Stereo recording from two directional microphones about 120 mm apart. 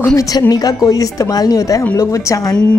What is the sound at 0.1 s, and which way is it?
Speech, 30° left (ahead or behind).